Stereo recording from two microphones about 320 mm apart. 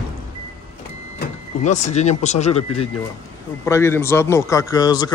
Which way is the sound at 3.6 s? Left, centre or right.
Centre.